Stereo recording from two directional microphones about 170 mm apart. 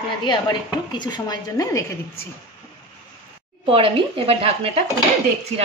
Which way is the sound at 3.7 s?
30° right (ahead or behind).